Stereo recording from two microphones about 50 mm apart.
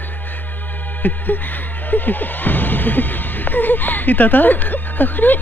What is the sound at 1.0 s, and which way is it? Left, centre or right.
Music, left.